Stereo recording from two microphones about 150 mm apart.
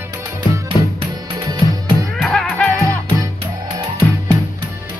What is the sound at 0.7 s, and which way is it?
Music, 25° left (ahead or behind).